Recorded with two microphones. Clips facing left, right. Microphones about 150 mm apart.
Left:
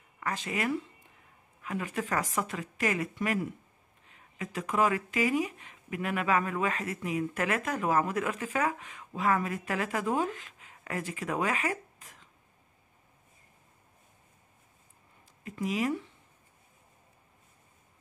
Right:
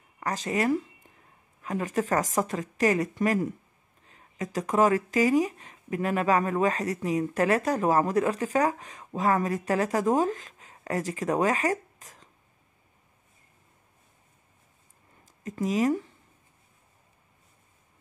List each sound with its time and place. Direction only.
0.2 s speech: 40° right (ahead or behind)
15.4 s speech: 40° right (ahead or behind)